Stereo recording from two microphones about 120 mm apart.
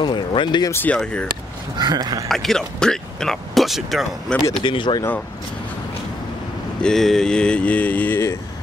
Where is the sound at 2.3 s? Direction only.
5° left (ahead or behind).